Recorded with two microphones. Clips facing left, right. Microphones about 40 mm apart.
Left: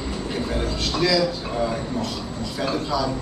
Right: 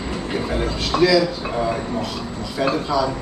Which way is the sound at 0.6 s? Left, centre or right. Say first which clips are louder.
Right 6 dB; centre.